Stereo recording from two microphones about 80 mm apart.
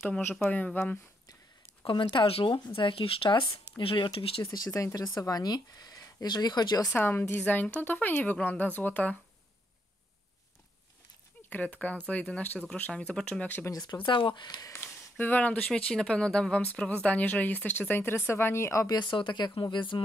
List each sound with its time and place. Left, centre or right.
0.4 s a woman's voice: centre
1.9 s speech: left
4.6 s speech: left
5.1 s speech: left
6.9 s a woman's voice: left
11.4 s speech: left
13.8 s speech: left
14.7 s speech: left; by 16.6 s centre
16.9 s a woman's voice: centre; by 18.9 s left
18.9 s speech: left